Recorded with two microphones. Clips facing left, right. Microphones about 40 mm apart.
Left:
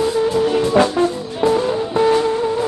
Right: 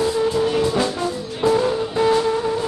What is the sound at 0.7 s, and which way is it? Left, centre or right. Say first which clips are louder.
Music: left 7 dB; left.